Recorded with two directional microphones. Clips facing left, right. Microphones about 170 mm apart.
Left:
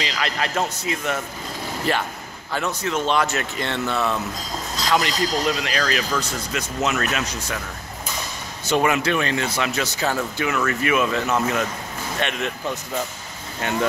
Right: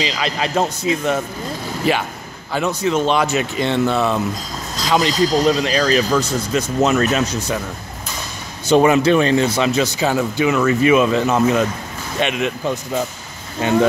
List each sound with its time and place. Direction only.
0.0 s speech: 20° right (ahead or behind)
2.5 s speech: 15° right (ahead or behind)
4.9 s speech: 30° right (ahead or behind)
8.6 s speech: 30° right (ahead or behind)
13.6 s speech: 25° right (ahead or behind)